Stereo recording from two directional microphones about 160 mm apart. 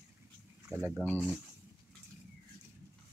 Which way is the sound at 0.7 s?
20° right (ahead or behind).